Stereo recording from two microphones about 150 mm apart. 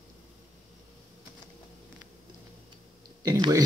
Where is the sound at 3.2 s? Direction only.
25° right (ahead or behind).